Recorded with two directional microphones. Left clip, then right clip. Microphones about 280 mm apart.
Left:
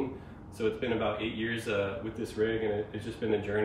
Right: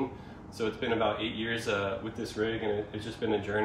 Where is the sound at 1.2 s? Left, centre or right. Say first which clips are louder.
Right 1 dB; centre.